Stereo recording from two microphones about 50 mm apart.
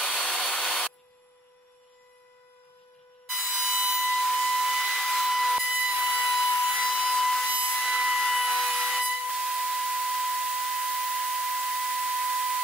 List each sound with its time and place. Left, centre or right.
0.2 s hair dryer: centre
3.3 s tools: centre
5.7 s sawing: centre
6.2 s wood: centre
7.0 s a sound: centre
7.4 s steam: centre
7.7 s wood: centre